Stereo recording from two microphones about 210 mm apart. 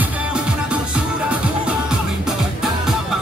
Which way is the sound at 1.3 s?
5° right (ahead or behind).